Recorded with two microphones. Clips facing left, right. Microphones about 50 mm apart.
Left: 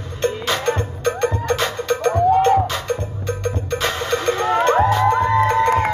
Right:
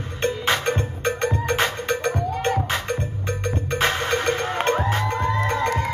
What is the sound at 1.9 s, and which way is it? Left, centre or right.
Music, left.